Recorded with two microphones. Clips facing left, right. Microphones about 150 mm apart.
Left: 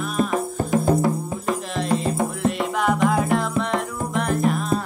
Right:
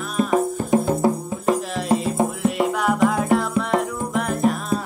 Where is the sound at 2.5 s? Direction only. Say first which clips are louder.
Right 1 dB; 5° right (ahead or behind).